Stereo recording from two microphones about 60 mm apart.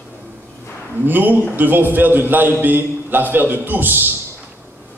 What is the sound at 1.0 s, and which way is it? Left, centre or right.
A man's voice, right.